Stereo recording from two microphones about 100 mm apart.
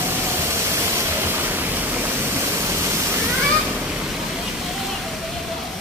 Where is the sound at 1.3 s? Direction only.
20° right (ahead or behind).